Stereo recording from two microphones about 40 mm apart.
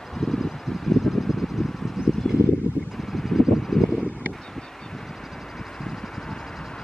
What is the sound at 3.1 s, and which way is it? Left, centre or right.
Vehicle, centre.